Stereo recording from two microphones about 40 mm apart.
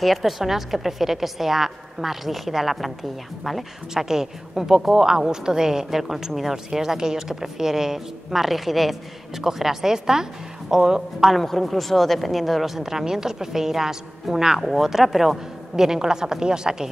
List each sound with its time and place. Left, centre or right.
0.0 s a woman's voice: centre
3.9 s a woman's voice: centre
11.3 s a woman's voice: centre